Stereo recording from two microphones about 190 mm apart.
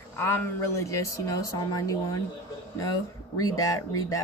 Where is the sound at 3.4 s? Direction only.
15° left (ahead or behind).